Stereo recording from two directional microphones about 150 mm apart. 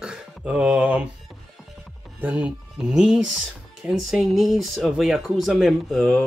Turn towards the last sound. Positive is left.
turn(degrees=5)  # may be behind; listen again after turning